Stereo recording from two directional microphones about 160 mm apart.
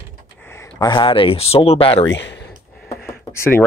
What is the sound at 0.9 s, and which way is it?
Speech, 30° left (ahead or behind).